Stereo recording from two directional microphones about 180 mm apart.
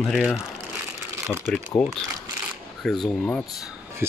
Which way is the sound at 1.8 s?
5° left (ahead or behind).